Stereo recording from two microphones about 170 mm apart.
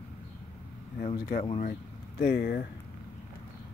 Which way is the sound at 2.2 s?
70° left (ahead or behind).